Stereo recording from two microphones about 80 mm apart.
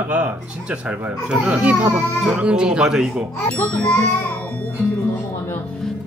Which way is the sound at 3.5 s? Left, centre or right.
Centre.